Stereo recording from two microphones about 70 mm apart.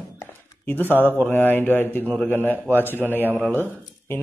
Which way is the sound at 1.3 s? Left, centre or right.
Left.